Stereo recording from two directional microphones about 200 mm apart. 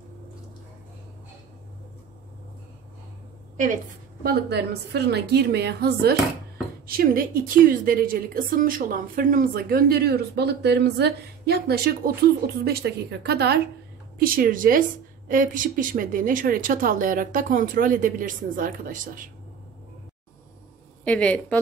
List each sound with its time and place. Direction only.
4.2 s a woman's voice: 50° right (ahead or behind)
21.0 s a woman's voice: 5° left (ahead or behind)